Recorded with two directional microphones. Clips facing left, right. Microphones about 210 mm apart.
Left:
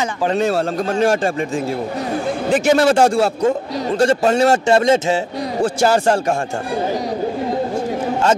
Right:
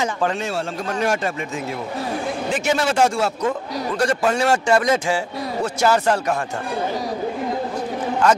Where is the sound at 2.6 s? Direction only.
35° left (ahead or behind).